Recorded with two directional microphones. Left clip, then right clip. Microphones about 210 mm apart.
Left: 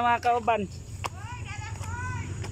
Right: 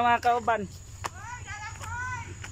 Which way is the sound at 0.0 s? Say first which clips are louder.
Even; centre (ahead or behind).